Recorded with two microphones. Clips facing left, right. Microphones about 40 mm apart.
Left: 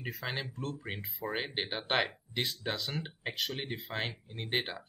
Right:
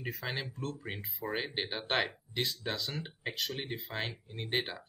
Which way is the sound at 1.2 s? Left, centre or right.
Left.